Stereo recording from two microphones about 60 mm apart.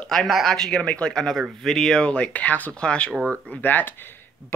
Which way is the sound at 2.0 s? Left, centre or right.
Centre.